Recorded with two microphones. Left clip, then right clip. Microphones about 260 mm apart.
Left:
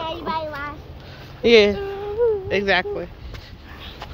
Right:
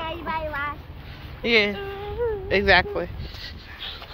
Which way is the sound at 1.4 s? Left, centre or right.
Left.